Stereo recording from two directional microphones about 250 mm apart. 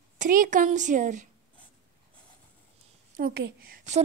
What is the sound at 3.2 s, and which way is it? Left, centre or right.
Speech, right.